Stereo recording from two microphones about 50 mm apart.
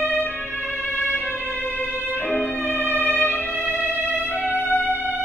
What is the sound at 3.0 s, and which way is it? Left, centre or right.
Music, left.